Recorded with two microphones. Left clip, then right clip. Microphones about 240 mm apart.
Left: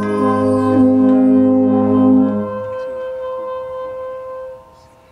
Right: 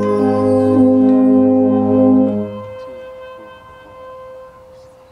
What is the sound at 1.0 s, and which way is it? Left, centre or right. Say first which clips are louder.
Music: even; centre.